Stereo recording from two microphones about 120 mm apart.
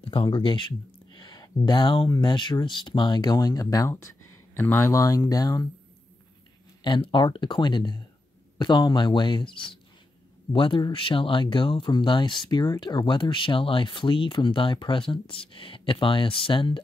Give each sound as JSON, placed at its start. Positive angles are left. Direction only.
{"t": 0.0, "sound": "speech", "side_deg": 45}
{"t": 6.8, "sound": "speech", "side_deg": 40}